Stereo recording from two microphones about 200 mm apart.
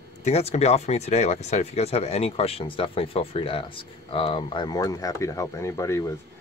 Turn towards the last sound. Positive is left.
turn(degrees=15)  # may be behind; listen again after turning